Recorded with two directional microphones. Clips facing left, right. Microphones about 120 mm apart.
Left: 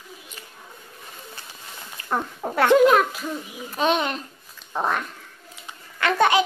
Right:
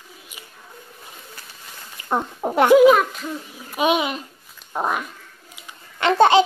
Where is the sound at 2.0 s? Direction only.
20° right (ahead or behind).